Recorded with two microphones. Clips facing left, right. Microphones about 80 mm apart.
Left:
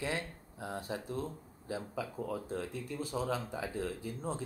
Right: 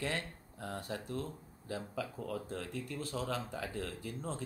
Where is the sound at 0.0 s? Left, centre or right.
Centre.